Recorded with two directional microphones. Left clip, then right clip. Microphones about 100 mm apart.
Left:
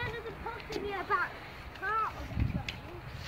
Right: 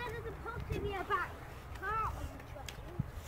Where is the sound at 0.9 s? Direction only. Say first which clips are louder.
Left 5 dB; 15° left (ahead or behind).